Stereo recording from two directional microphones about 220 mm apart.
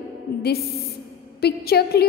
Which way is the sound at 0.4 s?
45° left (ahead or behind).